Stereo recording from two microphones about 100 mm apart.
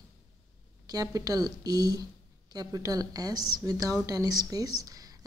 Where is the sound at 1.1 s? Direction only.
40° right (ahead or behind).